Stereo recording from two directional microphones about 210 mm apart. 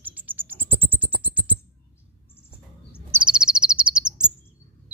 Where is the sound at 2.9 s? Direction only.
5° right (ahead or behind).